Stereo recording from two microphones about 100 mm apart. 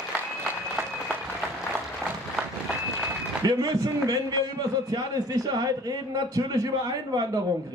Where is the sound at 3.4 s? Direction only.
40° right (ahead or behind).